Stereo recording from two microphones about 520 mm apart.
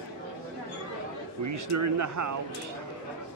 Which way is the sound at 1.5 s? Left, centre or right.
Right.